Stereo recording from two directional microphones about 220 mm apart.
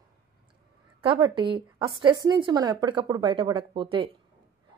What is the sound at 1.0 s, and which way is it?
A woman's voice, 20° right (ahead or behind).